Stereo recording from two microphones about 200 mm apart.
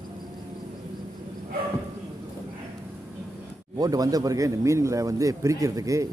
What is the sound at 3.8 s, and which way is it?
A man's voice, 20° right (ahead or behind).